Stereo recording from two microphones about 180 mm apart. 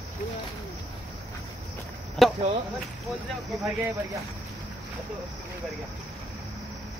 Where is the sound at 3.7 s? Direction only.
15° right (ahead or behind).